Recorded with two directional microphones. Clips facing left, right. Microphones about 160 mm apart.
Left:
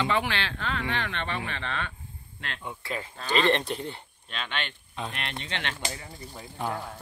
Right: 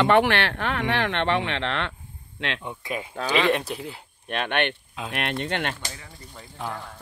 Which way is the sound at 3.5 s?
5° right (ahead or behind).